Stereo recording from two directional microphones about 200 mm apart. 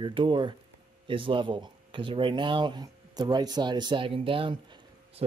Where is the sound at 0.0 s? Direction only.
25° right (ahead or behind).